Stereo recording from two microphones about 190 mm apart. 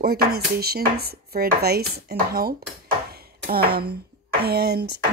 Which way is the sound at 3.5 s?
55° right (ahead or behind).